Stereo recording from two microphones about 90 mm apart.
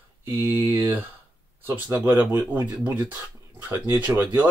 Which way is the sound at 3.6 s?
15° right (ahead or behind).